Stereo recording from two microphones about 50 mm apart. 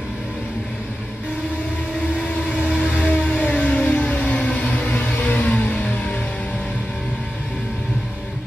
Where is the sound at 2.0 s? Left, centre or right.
Left.